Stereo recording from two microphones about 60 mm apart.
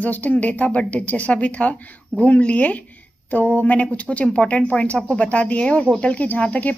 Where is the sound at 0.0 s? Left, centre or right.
Left.